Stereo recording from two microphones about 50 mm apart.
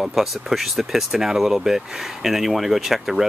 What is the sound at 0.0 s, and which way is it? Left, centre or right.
Speech, centre.